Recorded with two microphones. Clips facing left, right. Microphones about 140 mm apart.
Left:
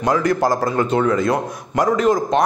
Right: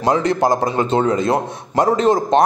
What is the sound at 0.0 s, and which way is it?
A man's voice, 25° right (ahead or behind).